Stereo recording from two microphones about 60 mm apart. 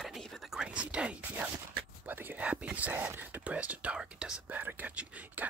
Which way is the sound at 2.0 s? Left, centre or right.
Right.